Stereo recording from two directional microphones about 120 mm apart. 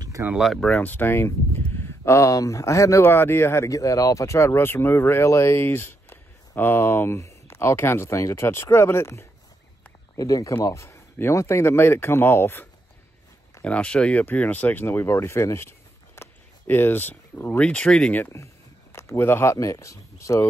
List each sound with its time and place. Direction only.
0.4 s speech: 5° left (ahead or behind); by 12.6 s 20° left (ahead or behind)
13.7 s speech: 10° left (ahead or behind)
18.2 s speech: 25° left (ahead or behind)